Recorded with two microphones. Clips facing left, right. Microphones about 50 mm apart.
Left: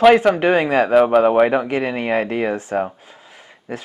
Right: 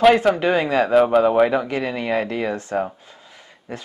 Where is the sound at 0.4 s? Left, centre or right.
Left.